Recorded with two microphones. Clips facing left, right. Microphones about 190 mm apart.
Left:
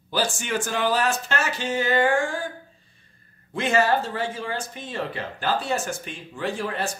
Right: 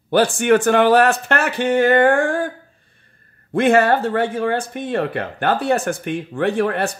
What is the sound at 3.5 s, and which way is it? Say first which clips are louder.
Speech: right 7 dB; 60° right (ahead or behind).